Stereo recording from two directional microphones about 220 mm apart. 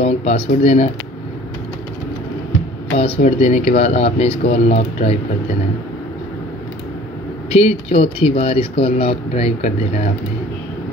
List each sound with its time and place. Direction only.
0.0 s speech: 30° left (ahead or behind)
3.0 s speech: 30° left (ahead or behind)
7.5 s speech: 30° left (ahead or behind)